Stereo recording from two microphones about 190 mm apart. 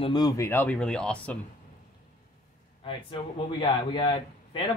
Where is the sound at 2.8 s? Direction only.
25° left (ahead or behind).